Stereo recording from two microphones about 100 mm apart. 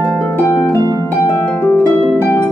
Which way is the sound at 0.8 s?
40° right (ahead or behind).